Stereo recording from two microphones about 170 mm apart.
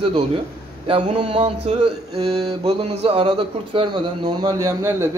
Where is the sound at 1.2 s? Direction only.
30° right (ahead or behind).